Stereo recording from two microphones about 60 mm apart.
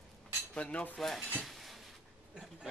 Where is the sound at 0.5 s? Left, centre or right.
Left.